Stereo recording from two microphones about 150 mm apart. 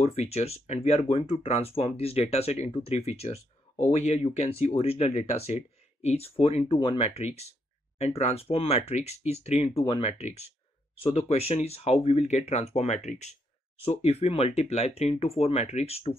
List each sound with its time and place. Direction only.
0.0 s speech: 45° left (ahead or behind)